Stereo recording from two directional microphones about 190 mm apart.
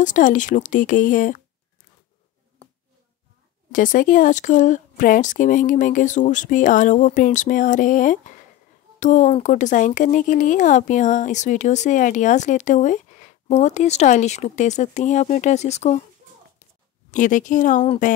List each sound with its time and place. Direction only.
0.0 s speech: 40° left (ahead or behind)
3.7 s speech: 45° left (ahead or behind)
17.1 s speech: 45° left (ahead or behind)